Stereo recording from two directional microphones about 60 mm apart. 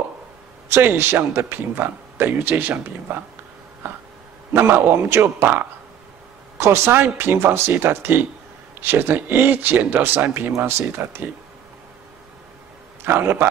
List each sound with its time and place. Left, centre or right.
0.7 s speech: right
3.8 s a sound: right
4.5 s speech: right
13.0 s speech: right